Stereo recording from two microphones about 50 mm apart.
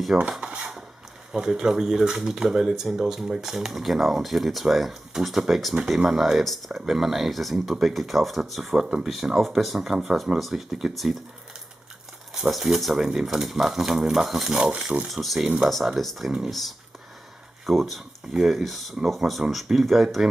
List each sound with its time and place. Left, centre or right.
0.4 s a sound: right
1.3 s speech: centre
12.4 s speech: centre